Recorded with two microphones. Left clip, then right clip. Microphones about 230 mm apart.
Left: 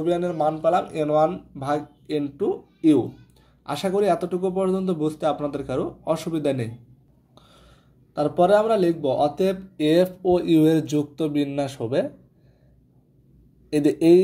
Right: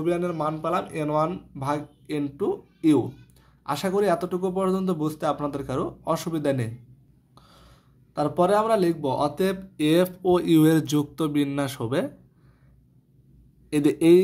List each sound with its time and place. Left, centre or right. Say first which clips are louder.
0.0 s speech: left 3 dB; centre